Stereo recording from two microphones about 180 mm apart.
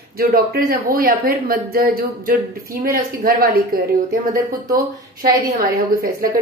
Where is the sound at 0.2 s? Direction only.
55° right (ahead or behind).